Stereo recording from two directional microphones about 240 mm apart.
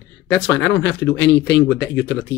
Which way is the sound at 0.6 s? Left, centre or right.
Left.